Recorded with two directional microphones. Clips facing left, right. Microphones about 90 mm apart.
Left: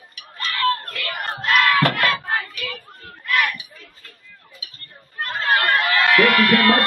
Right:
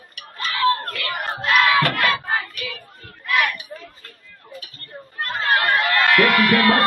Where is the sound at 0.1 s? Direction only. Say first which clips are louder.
Right 1 dB; 50° right (ahead or behind).